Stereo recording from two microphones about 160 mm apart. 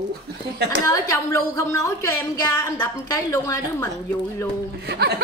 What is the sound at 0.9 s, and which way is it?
A woman's voice, 20° left (ahead or behind).